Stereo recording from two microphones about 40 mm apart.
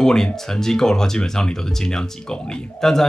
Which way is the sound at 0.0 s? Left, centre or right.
Centre.